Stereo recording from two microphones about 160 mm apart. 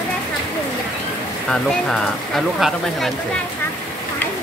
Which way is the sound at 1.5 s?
5° left (ahead or behind).